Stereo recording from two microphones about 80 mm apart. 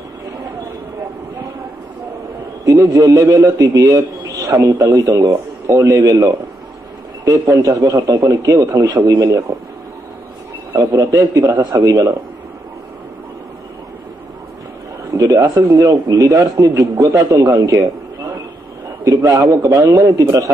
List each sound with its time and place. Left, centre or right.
2.6 s a man's voice: right
10.7 s a man's voice: right
15.1 s a man's voice: right
19.2 s a man's voice: right